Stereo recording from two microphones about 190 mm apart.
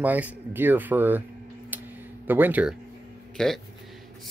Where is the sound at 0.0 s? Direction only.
10° right (ahead or behind).